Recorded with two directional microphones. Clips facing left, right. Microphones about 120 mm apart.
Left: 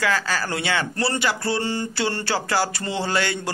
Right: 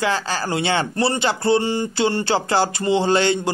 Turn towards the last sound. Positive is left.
turn(degrees=-25)  # may be behind; listen again after turning